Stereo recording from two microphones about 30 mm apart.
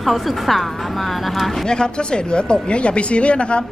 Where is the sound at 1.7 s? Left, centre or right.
Left.